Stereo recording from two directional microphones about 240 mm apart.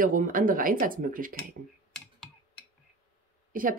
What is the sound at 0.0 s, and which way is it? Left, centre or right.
Speech, right.